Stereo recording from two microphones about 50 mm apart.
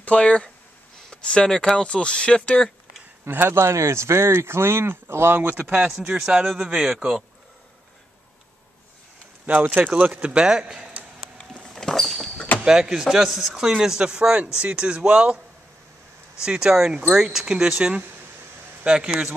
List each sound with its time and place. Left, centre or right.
0.0 s speech: left
3.3 s speech: right
3.5 s speech: right
6.5 s speech: centre
9.8 s speech: right
11.3 s vehicle: centre
12.6 s speech: centre
16.4 s speech: centre